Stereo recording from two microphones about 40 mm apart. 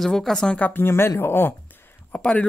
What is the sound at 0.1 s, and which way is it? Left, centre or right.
Speech, centre.